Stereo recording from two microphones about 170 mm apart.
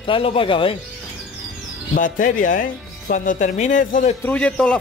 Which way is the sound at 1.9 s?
50° left (ahead or behind).